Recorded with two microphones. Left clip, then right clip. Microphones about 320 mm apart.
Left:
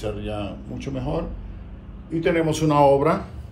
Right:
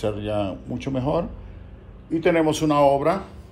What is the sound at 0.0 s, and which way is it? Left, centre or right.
Speech, right.